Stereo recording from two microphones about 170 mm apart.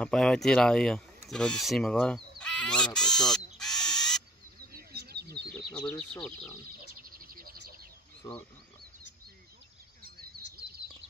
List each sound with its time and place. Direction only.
0.0 s speech: 5° left (ahead or behind)
1.3 s bleat: 5° left (ahead or behind)
3.5 s bird: 5° left (ahead or behind)
4.7 s a sound: 65° right (ahead or behind)
5.5 s insect: 5° left (ahead or behind)
7.2 s bird: 60° right (ahead or behind)
8.2 s speech: 20° left (ahead or behind)